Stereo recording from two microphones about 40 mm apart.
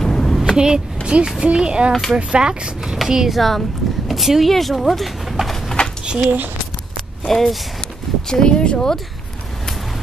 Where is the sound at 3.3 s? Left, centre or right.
Centre.